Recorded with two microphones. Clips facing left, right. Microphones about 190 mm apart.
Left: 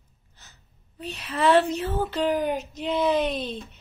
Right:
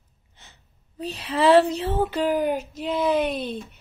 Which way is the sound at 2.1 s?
5° right (ahead or behind).